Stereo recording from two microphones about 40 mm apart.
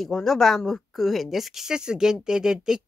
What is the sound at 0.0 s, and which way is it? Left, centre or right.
Speech, centre.